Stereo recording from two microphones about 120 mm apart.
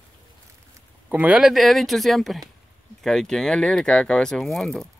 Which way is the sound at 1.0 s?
10° right (ahead or behind).